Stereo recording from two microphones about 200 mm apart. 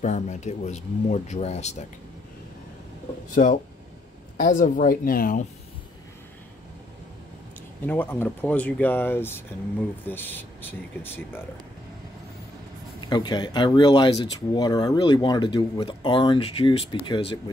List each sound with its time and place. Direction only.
0.0 s speech: 35° left (ahead or behind)
4.4 s speech: 40° left (ahead or behind)
7.8 s speech: 10° left (ahead or behind)
13.1 s speech: 20° left (ahead or behind)